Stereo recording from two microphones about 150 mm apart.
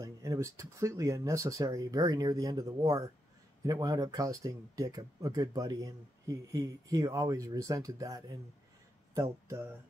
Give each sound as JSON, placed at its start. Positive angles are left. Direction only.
{"t": 0.0, "sound": "speech", "side_deg": -20}